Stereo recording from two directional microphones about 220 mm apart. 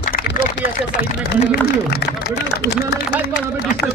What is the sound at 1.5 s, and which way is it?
Speech, 50° left (ahead or behind).